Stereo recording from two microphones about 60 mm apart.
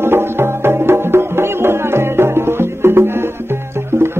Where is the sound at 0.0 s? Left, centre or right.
Right.